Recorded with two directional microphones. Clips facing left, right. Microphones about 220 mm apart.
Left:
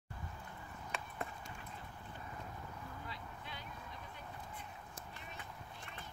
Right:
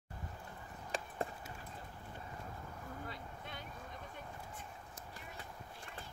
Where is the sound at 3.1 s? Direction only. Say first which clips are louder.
Right 2 dB; 50° right (ahead or behind).